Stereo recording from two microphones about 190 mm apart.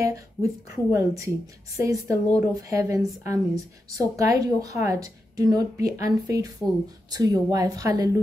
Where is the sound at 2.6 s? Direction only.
15° right (ahead or behind).